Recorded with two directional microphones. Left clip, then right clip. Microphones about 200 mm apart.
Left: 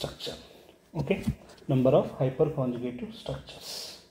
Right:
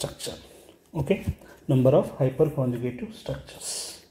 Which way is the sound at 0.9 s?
30° right (ahead or behind).